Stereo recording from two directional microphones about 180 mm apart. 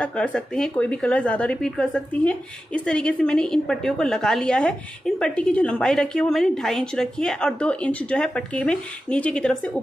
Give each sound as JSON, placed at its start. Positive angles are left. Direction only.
{"t": 0.0, "sound": "a woman's voice", "side_deg": 5}